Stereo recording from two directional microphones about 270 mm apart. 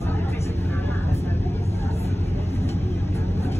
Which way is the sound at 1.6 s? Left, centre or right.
Left.